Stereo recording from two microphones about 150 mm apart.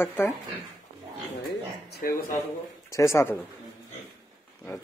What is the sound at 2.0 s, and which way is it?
Speech, 75° left (ahead or behind).